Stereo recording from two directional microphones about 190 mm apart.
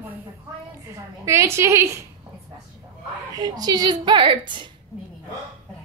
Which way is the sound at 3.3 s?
20° right (ahead or behind).